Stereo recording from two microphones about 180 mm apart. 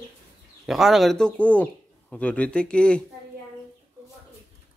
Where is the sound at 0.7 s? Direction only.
Centre (ahead or behind).